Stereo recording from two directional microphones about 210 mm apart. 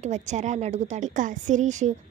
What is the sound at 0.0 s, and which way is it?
A woman's voice, 35° right (ahead or behind).